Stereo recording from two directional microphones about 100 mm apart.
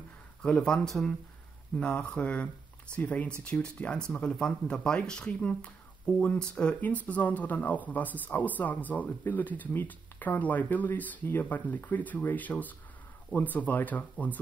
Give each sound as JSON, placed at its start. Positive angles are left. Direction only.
{"t": 0.4, "sound": "speech", "side_deg": 10}